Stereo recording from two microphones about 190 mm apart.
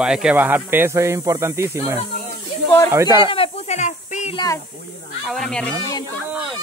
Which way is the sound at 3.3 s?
30° left (ahead or behind).